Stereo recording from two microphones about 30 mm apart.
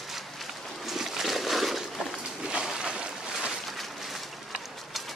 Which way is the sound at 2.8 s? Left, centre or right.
Right.